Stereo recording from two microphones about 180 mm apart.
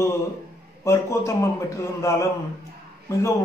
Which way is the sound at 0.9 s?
15° left (ahead or behind).